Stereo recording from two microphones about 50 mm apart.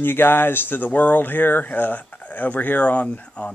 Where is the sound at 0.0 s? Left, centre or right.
Left.